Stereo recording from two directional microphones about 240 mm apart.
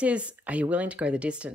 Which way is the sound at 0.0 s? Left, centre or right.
Centre.